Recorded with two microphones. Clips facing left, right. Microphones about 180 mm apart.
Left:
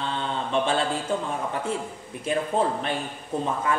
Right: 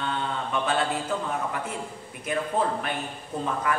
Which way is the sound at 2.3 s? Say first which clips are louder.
Left 3 dB; 30° left (ahead or behind).